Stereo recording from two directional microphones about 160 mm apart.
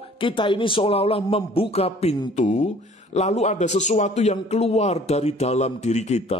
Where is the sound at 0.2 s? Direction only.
30° left (ahead or behind).